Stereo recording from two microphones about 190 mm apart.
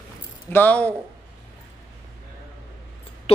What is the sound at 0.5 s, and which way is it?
Speech, 10° left (ahead or behind).